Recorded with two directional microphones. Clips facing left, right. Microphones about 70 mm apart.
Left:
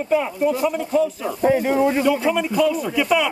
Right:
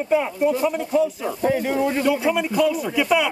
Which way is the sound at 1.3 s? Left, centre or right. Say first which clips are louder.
Left 4 dB; left.